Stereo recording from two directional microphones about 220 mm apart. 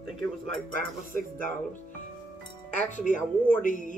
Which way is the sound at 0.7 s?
40° left (ahead or behind).